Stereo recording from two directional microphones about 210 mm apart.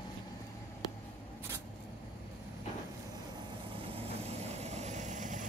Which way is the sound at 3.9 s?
30° right (ahead or behind).